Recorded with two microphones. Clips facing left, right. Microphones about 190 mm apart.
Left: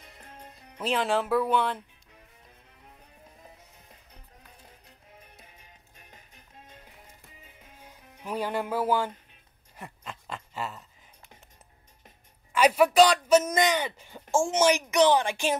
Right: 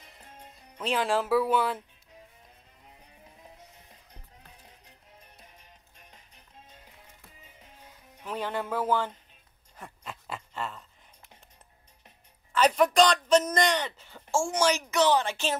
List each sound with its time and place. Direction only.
0.6 s speech: centre (ahead or behind)
5.4 s music: 55° left (ahead or behind)
8.2 s speech: 10° left (ahead or behind)
9.8 s dog: centre (ahead or behind)
10.5 s a sound: 5° left (ahead or behind)
12.5 s speech: 10° left (ahead or behind)